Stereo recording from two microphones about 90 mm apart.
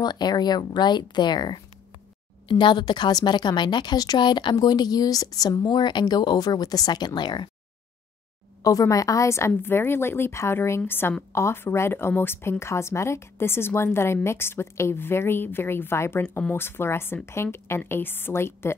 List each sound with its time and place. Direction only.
0.0 s a woman's voice: 50° left (ahead or behind)
8.6 s a woman's voice: 40° left (ahead or behind)